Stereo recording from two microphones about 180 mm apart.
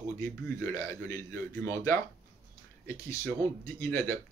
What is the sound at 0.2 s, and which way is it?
A man's voice, 15° left (ahead or behind).